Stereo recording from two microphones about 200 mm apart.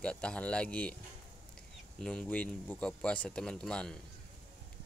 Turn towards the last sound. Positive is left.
turn(degrees=5)  # may be behind; listen again after turning